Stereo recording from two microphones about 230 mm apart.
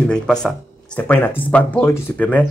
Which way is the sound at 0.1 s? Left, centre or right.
Centre.